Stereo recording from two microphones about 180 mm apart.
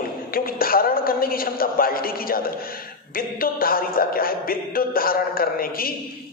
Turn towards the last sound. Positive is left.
turn(degrees=55)  # may be behind; listen again after turning